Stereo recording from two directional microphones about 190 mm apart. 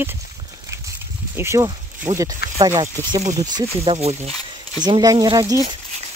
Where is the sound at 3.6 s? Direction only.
30° right (ahead or behind).